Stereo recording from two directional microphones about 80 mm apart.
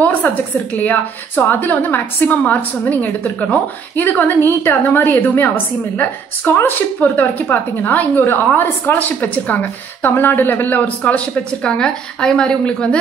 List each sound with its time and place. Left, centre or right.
0.7 s a woman's voice: left